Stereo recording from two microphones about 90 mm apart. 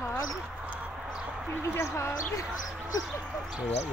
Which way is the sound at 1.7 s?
30° left (ahead or behind).